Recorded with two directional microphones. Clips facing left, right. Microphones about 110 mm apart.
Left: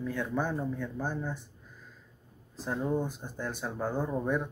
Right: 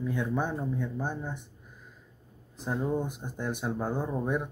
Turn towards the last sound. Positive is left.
turn(degrees=-15)  # may be behind; listen again after turning